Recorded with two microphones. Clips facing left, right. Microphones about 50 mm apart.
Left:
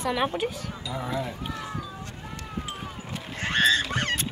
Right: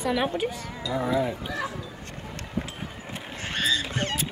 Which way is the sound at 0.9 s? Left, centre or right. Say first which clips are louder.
Right 6 dB; centre.